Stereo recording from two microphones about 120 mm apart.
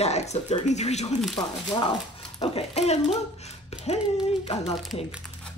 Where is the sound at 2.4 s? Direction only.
55° left (ahead or behind).